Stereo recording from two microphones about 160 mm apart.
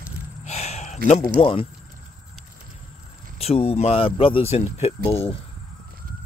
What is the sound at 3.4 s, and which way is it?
Speech, 40° left (ahead or behind).